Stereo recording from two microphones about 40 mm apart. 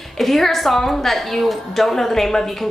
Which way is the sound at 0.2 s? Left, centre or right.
Centre.